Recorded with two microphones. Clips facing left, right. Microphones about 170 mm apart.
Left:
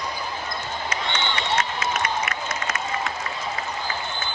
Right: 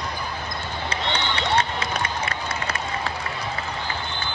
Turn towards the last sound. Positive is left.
turn(degrees=-30)  # may be behind; listen again after turning